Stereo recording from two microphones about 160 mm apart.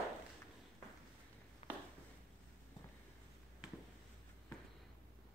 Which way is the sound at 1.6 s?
40° left (ahead or behind).